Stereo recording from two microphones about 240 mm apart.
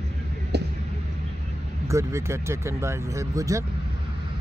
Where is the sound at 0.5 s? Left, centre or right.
Right.